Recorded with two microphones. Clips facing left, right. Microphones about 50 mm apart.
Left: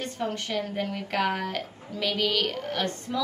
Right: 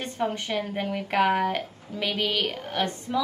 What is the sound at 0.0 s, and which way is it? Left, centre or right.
A woman's voice, centre.